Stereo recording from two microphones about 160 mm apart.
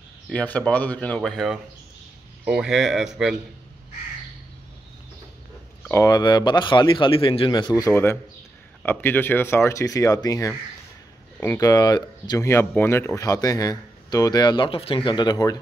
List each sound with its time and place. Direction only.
0.3 s speech: 10° left (ahead or behind)
5.9 s speech: 20° left (ahead or behind)